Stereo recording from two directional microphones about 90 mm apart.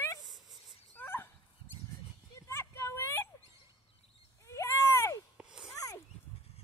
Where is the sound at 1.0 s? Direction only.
25° left (ahead or behind).